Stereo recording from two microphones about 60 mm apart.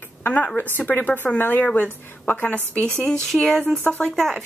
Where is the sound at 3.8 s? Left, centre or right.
Left.